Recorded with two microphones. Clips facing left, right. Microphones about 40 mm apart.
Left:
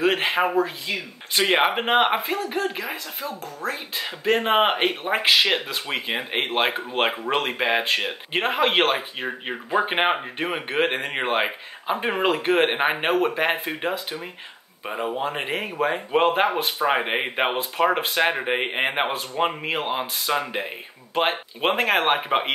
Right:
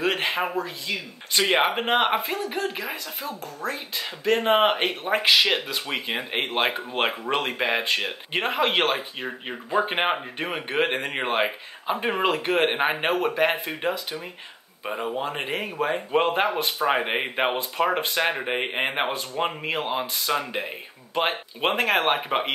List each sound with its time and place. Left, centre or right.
0.0 s speech: centre
2.3 s speech: centre
3.6 s speech: centre